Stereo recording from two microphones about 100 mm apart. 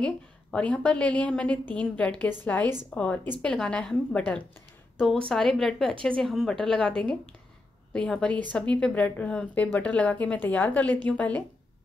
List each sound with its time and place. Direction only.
0.0 s a woman's voice: 10° left (ahead or behind)